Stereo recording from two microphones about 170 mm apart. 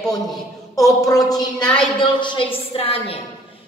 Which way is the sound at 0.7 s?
20° left (ahead or behind).